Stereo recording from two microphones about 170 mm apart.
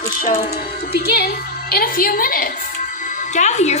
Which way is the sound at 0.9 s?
70° left (ahead or behind).